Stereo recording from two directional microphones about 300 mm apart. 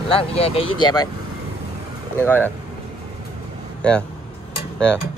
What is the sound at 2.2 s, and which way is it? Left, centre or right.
Speech, centre.